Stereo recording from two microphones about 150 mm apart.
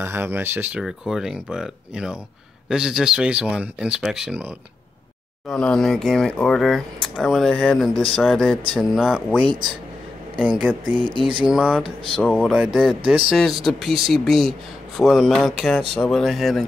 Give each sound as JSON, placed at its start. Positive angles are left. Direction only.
{"t": 0.0, "sound": "speech", "side_deg": -15}
{"t": 0.7, "sound": "speech", "side_deg": -5}
{"t": 5.5, "sound": "speech", "side_deg": 5}
{"t": 10.4, "sound": "speech", "side_deg": -5}
{"t": 10.9, "sound": "speech", "side_deg": -35}
{"t": 11.2, "sound": "speech", "side_deg": -5}
{"t": 12.2, "sound": "speech", "side_deg": 10}
{"t": 12.4, "sound": "speech", "side_deg": -5}